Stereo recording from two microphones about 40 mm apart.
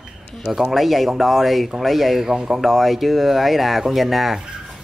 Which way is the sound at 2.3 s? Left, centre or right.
Centre.